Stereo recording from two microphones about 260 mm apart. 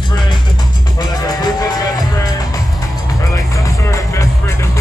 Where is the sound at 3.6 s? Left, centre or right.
Centre.